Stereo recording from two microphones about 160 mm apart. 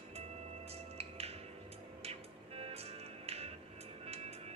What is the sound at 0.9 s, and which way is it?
Music, 40° right (ahead or behind).